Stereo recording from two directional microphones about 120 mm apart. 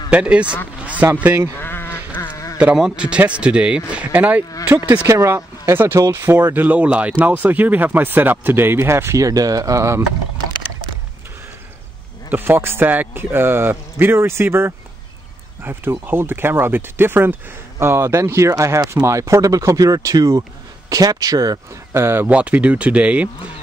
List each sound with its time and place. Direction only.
0.1 s speech: 10° right (ahead or behind)
1.6 s sheep: 20° left (ahead or behind)
2.6 s speech: 5° right (ahead or behind); by 10.0 s 25° right (ahead or behind)
12.3 s speech: 15° right (ahead or behind)